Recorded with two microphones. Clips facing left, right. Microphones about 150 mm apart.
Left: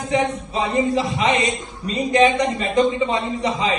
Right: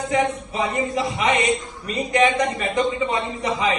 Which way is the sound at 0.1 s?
30° left (ahead or behind).